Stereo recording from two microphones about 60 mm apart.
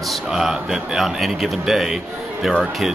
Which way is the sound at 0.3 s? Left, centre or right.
Centre.